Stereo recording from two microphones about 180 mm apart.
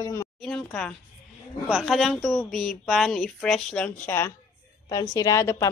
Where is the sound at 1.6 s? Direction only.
5° right (ahead or behind).